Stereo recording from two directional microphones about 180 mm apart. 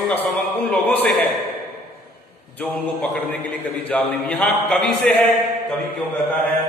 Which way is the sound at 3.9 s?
10° left (ahead or behind).